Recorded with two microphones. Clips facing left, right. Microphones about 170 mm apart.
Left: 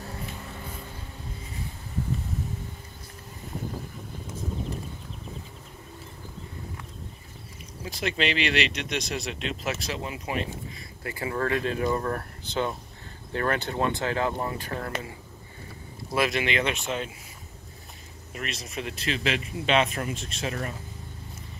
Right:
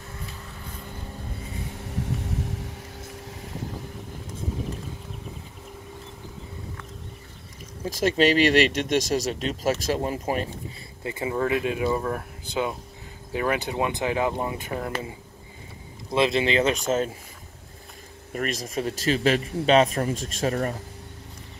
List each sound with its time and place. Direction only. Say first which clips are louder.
1.8 s vehicle: even; 85° right
7.9 s speech: right 8 dB; 45° right (ahead or behind)
11.1 s speech: right 3 dB; 20° right (ahead or behind); by 17.1 s 40° right (ahead or behind)
18.3 s speech: right 7 dB; 45° right (ahead or behind)